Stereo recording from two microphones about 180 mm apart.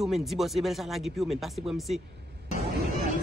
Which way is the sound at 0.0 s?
Centre (ahead or behind).